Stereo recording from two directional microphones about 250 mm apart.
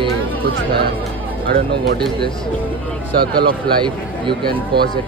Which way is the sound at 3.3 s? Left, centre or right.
Centre.